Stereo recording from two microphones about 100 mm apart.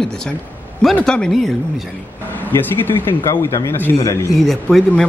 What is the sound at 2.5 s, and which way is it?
A man's voice, 20° left (ahead or behind).